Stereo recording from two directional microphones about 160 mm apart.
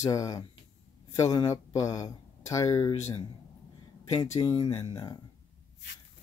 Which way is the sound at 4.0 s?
25° left (ahead or behind).